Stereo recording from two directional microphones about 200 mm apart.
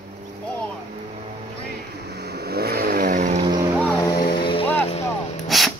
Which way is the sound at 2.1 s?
50° right (ahead or behind).